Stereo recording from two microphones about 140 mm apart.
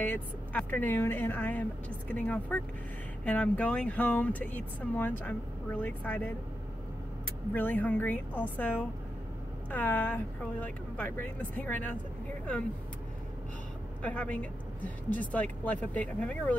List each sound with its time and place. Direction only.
0.0 s speech: 10° left (ahead or behind)
7.5 s speech: 10° left (ahead or behind)
14.0 s speech: 10° left (ahead or behind)